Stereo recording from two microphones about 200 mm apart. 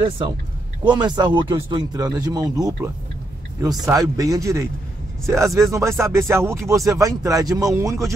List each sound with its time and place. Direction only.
0.8 s speech: 20° right (ahead or behind)